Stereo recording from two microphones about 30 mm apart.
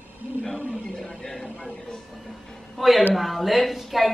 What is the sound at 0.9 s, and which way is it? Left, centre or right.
Speech, centre.